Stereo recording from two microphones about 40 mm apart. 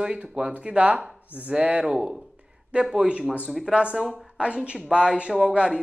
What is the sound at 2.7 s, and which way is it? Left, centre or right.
Speech, right.